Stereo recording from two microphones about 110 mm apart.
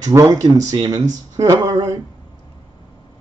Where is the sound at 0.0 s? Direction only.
30° right (ahead or behind).